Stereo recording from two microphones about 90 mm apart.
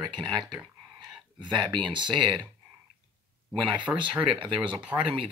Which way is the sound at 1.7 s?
55° right (ahead or behind).